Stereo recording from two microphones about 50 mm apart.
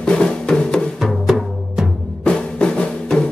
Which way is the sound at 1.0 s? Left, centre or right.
Centre.